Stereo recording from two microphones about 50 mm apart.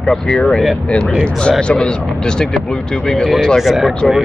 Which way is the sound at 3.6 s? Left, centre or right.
Centre.